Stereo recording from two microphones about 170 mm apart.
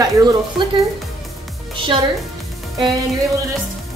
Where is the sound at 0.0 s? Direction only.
20° right (ahead or behind).